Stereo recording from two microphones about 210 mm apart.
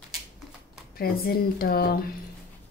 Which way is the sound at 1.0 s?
45° left (ahead or behind).